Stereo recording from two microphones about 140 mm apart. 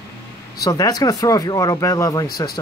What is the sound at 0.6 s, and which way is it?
Speech, 25° left (ahead or behind).